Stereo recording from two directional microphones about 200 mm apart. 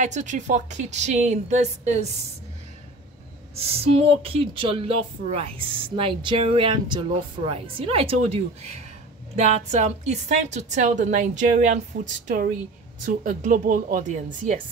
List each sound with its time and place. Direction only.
0.0 s a woman's voice: 35° right (ahead or behind)
3.5 s a woman's voice: 30° right (ahead or behind)